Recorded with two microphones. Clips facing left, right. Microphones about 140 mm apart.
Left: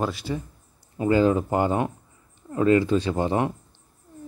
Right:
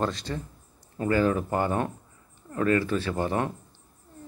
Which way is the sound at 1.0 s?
20° left (ahead or behind).